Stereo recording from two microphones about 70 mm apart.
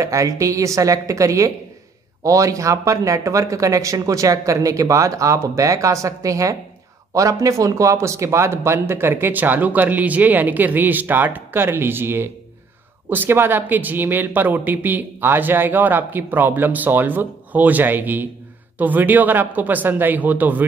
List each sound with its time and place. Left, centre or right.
0.0 s speech: right